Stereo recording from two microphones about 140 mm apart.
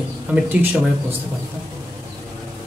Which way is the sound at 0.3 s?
10° right (ahead or behind).